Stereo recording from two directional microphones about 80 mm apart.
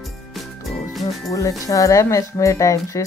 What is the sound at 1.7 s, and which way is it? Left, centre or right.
Speech, left.